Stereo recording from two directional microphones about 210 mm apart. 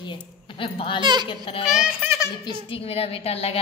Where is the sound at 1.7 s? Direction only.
10° right (ahead or behind).